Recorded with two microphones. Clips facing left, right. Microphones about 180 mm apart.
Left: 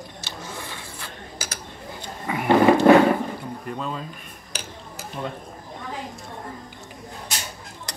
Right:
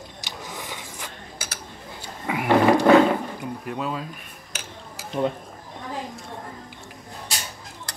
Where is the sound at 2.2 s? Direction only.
10° right (ahead or behind).